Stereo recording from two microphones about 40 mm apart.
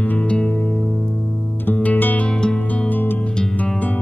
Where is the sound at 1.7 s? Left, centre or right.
Left.